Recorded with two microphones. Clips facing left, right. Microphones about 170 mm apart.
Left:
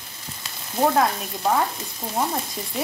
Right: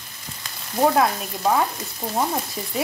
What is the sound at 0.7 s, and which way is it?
Speech, centre (ahead or behind).